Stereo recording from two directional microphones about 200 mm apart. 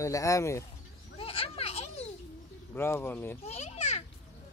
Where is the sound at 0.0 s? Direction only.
15° left (ahead or behind).